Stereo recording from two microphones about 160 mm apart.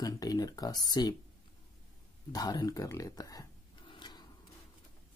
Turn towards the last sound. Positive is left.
turn(degrees=25)  # may be behind; listen again after turning